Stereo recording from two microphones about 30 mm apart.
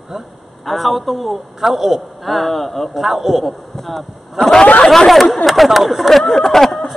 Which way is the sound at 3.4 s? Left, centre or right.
Centre.